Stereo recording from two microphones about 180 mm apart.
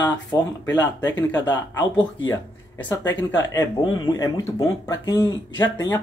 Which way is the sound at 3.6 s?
15° left (ahead or behind).